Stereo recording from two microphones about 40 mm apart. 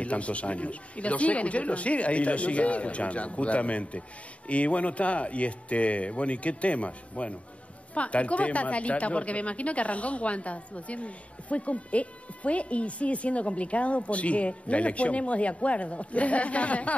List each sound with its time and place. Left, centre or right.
0.0 s a woman's voice: left